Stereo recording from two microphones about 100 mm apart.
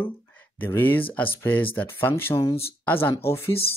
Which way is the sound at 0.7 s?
20° left (ahead or behind).